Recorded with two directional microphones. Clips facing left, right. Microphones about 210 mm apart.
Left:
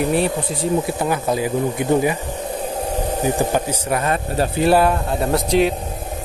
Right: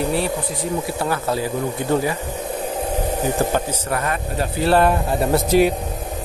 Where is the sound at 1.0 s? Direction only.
15° left (ahead or behind).